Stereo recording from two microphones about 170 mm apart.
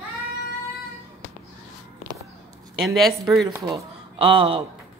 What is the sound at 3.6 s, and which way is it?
Speech, 30° right (ahead or behind).